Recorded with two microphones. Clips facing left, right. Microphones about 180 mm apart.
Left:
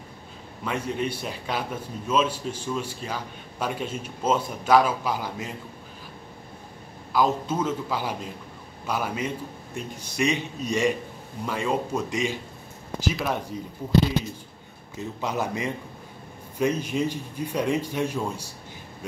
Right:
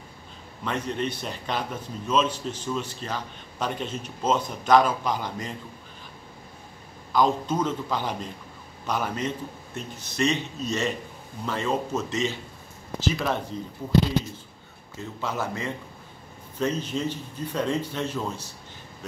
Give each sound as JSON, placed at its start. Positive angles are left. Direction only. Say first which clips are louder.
{"t": 0.7, "sound": "a man's voice", "louder": "left 1 dB", "side_deg": 10}
{"t": 7.1, "sound": "a man's voice", "louder": "right 1 dB", "side_deg": 5}
{"t": 15.0, "sound": "a man's voice", "louder": "left 2 dB", "side_deg": 15}